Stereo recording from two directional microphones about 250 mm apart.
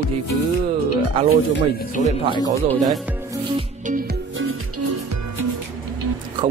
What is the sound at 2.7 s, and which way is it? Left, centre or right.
Speech, centre.